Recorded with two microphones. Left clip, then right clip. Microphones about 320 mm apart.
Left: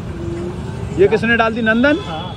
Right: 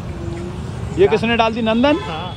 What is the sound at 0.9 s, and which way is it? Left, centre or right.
Speech, centre.